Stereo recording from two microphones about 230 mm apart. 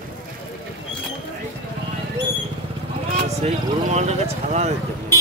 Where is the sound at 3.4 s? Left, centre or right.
Right.